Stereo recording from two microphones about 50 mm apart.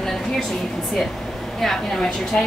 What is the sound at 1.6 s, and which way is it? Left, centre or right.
Speech, centre.